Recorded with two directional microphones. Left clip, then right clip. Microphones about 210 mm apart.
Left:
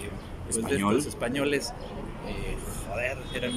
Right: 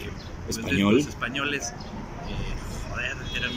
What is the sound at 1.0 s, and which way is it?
Speech, 25° left (ahead or behind).